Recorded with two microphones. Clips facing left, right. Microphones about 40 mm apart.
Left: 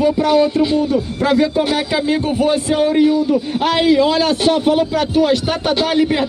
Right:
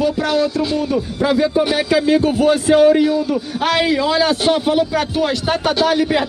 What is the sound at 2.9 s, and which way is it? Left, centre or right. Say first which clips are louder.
Speech: left 2 dB; centre.